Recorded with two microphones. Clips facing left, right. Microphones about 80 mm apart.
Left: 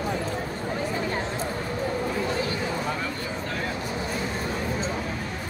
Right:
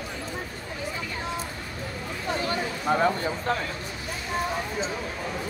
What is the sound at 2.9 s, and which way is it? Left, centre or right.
Speech, right.